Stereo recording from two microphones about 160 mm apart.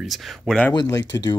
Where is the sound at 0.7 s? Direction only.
20° left (ahead or behind).